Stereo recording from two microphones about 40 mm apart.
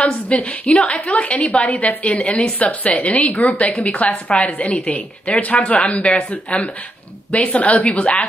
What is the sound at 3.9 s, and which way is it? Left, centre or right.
Speech, left.